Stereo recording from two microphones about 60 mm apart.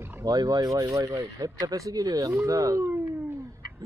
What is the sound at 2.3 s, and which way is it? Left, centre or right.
Speech, right.